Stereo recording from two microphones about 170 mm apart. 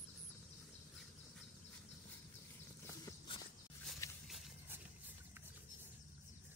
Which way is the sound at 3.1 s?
25° left (ahead or behind).